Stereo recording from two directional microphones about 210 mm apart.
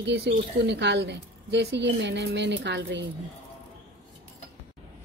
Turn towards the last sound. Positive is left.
turn(degrees=-55)  # may be behind; listen again after turning